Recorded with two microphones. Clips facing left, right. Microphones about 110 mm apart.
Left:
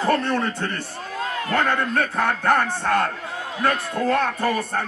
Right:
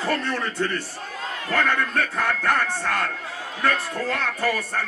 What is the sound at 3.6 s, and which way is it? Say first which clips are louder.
Speech: left 3 dB; 45° left (ahead or behind).